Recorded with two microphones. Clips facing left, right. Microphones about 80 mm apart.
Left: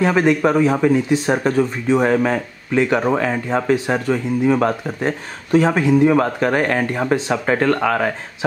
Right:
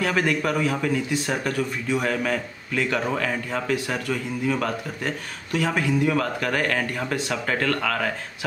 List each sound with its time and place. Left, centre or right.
0.0 s speech: left